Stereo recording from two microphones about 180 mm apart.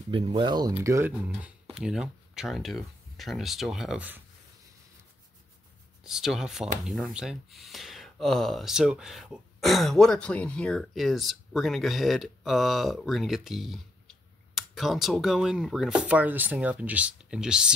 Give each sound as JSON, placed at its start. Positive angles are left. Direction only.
{"t": 0.1, "sound": "speech", "side_deg": -25}
{"t": 6.0, "sound": "speech", "side_deg": 0}